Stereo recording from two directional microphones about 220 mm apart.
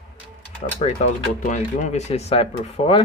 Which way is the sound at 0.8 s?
30° left (ahead or behind).